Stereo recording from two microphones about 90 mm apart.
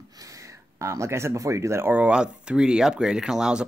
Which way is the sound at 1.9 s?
10° right (ahead or behind).